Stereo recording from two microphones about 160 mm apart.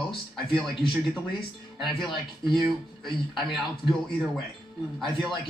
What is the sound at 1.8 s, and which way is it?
A man's voice, centre (ahead or behind).